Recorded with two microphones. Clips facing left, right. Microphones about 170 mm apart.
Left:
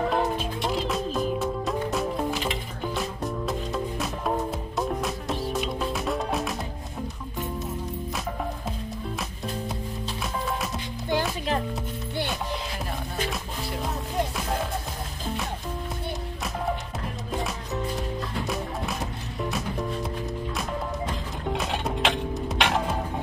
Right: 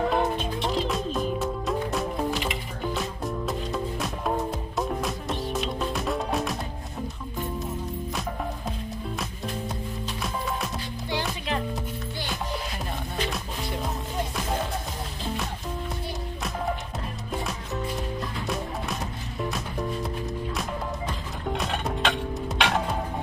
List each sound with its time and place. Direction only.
0.1 s music: centre (ahead or behind)
11.1 s music: 45° left (ahead or behind)
13.3 s music: centre (ahead or behind)
19.5 s music: centre (ahead or behind)
21.5 s music: 5° left (ahead or behind)